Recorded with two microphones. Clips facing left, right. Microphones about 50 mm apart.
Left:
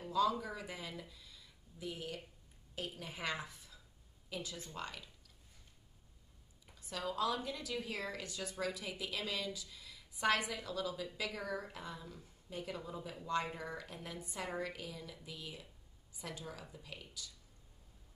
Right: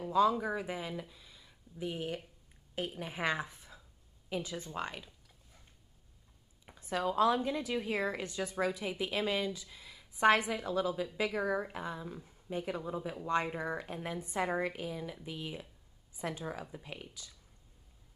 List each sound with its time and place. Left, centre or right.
0.1 s a woman's voice: right
6.6 s a woman's voice: right